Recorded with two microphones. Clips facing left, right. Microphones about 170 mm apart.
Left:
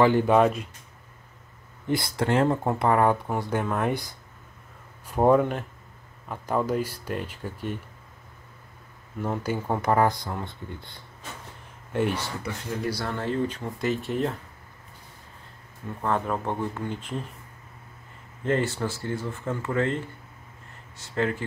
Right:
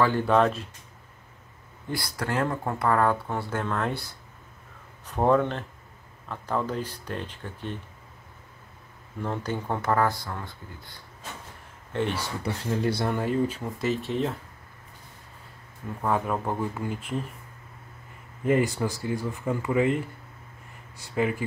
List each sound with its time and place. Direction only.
0.0 s speech: 15° left (ahead or behind)
1.9 s speech: 25° left (ahead or behind)
5.1 s speech: 10° left (ahead or behind)
9.2 s speech: 5° left (ahead or behind); by 11.0 s 25° left (ahead or behind)
11.9 s speech: 5° left (ahead or behind)
12.8 s speech: 25° right (ahead or behind)
13.1 s speech: 10° right (ahead or behind)
16.0 s speech: 5° right (ahead or behind)
18.4 s speech: 10° right (ahead or behind)
21.0 s speech: 10° right (ahead or behind)